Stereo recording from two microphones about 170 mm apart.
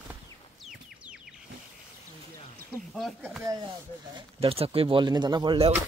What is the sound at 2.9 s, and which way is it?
Speech, centre (ahead or behind).